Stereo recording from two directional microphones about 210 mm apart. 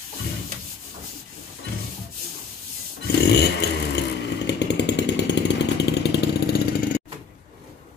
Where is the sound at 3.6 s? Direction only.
55° left (ahead or behind).